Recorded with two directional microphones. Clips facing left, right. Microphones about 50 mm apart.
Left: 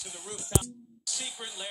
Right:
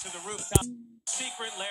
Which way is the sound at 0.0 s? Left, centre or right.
Right.